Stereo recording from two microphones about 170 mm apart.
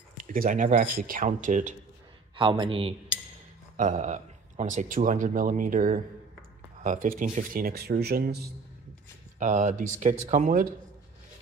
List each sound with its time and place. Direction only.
0.2 s speech: 55° right (ahead or behind)
2.3 s speech: 30° right (ahead or behind)
3.7 s speech: 45° right (ahead or behind); by 8.5 s 65° right (ahead or behind)
9.4 s speech: 45° right (ahead or behind)